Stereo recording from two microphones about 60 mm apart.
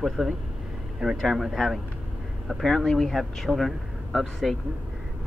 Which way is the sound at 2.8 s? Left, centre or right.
Centre.